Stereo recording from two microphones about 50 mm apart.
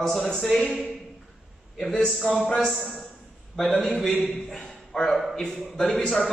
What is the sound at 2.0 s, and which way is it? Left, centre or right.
Speech, centre.